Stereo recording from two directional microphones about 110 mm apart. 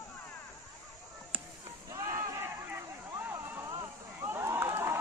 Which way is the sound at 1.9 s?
35° right (ahead or behind).